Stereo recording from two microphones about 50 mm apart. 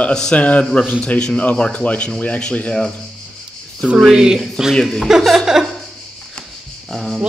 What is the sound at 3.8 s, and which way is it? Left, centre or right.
Speech, centre.